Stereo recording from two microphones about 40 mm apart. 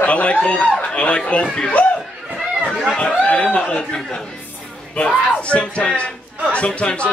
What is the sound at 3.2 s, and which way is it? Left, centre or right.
A man's voice, left.